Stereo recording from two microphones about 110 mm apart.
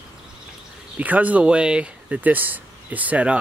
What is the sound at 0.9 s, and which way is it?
Speech, 15° right (ahead or behind).